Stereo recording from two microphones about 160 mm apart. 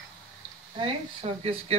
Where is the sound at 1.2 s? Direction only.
40° right (ahead or behind).